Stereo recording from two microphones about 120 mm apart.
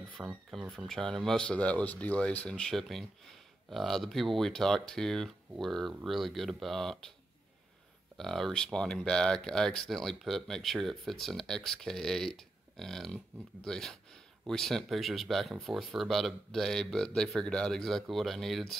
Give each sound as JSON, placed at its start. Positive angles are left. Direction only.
{"t": 0.2, "sound": "speech", "side_deg": 0}
{"t": 8.2, "sound": "speech", "side_deg": 5}